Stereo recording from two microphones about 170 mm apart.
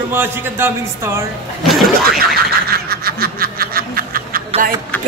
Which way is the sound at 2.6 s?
65° right (ahead or behind).